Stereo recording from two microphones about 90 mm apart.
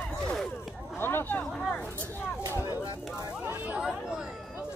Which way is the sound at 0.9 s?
25° left (ahead or behind).